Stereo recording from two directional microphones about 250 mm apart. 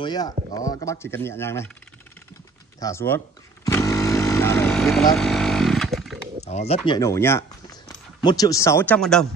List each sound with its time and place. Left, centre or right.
0.0 s speech: centre
2.8 s speech: centre
3.6 s vehicle: centre
6.4 s speech: left
6.9 s speech: centre